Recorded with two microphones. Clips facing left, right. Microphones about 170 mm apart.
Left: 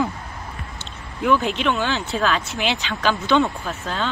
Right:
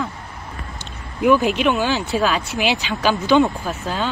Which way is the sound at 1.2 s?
10° right (ahead or behind).